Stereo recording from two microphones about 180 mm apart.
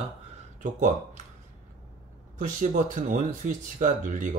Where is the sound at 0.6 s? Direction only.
45° right (ahead or behind).